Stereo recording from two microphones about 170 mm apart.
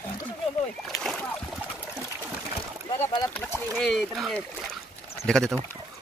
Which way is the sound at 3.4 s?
5° left (ahead or behind).